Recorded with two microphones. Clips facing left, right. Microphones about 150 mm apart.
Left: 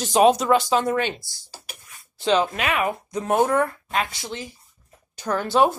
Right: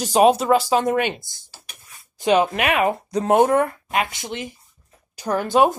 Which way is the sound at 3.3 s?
20° right (ahead or behind).